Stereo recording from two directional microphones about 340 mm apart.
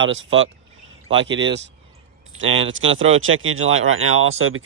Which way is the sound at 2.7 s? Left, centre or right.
Right.